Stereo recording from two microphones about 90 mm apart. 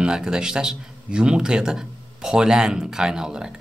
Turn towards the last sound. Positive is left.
turn(degrees=-10)  # may be behind; listen again after turning